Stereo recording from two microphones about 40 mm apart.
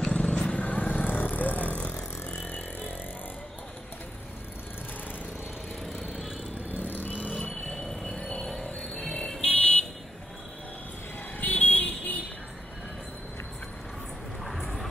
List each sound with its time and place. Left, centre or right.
0.0 s vehicle: left
0.7 s vehicle: left
5.9 s vehicle: centre
6.8 s vehicle: left
7.6 s music: centre
9.0 s a sound: centre
9.4 s vehicle: left
11.3 s vehicle: left
14.4 s vehicle: centre